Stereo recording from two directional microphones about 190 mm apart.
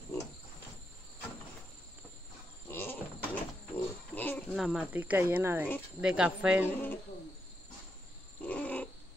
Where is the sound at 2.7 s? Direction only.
10° left (ahead or behind).